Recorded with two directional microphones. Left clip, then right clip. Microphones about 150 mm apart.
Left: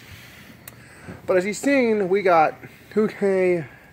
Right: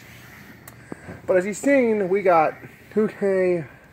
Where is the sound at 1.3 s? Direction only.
5° left (ahead or behind).